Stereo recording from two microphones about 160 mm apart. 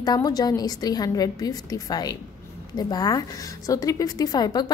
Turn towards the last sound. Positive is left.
turn(degrees=25)  # may be behind; listen again after turning